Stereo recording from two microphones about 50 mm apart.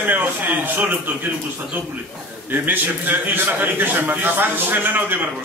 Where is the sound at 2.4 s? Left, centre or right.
Right.